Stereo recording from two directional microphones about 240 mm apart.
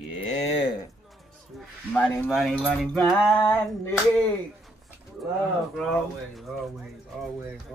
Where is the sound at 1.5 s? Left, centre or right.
Centre.